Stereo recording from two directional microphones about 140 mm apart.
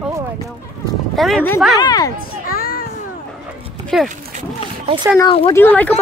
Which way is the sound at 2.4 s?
90° left.